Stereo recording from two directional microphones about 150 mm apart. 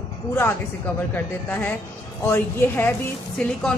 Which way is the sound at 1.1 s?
10° left (ahead or behind).